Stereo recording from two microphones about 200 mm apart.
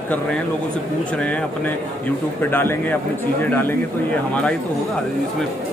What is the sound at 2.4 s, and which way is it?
A man's voice, 10° left (ahead or behind).